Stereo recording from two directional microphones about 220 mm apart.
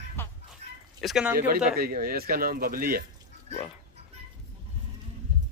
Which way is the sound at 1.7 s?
45° right (ahead or behind).